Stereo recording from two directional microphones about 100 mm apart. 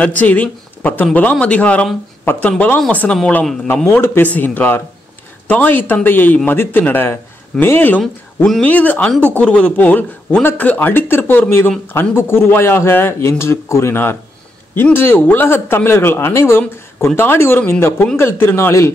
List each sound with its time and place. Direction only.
0.0 s speech: 15° left (ahead or behind)